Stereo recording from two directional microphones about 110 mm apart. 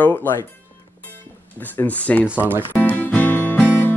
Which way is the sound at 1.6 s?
15° left (ahead or behind).